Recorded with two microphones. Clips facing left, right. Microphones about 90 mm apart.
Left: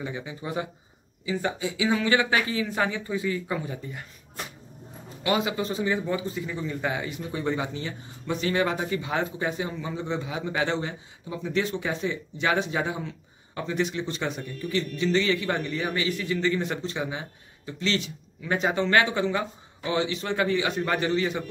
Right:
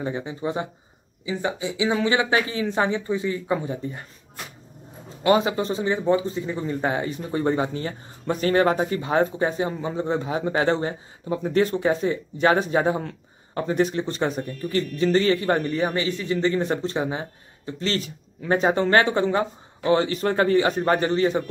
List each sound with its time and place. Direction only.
0.0 s a man's voice: 35° right (ahead or behind)
1.2 s speech: 20° right (ahead or behind)
5.2 s a man's voice: 35° right (ahead or behind)